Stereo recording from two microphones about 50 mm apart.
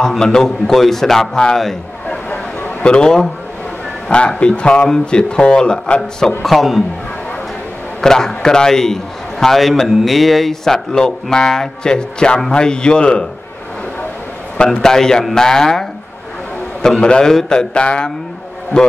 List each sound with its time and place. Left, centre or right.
0.2 s a man's voice: centre
2.0 s a sound: left
2.8 s a man's voice: centre
6.4 s a man's voice: centre
8.0 s a man's voice: centre
14.6 s a man's voice: centre